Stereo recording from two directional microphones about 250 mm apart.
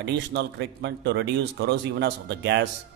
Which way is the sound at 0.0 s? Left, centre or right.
Right.